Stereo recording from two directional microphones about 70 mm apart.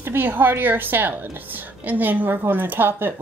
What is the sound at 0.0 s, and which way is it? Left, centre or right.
A woman's voice, right.